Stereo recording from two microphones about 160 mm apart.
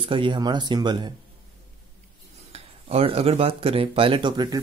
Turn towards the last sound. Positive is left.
turn(degrees=-25)  # may be behind; listen again after turning